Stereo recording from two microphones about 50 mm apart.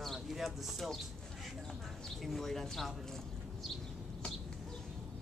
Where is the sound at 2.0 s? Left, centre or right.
Centre.